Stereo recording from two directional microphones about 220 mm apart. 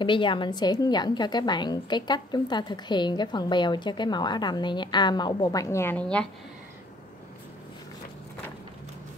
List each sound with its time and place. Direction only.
0.0 s a woman's voice: 20° left (ahead or behind); by 6.2 s 5° left (ahead or behind)